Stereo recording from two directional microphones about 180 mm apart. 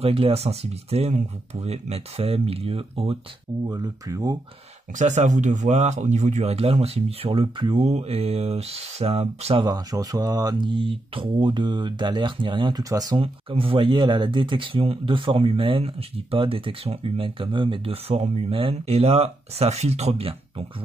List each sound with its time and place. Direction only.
0.0 s speech: 35° right (ahead or behind)
4.9 s speech: 40° right (ahead or behind)